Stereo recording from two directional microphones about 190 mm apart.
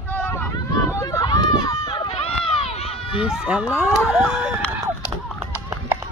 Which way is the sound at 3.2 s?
5° right (ahead or behind).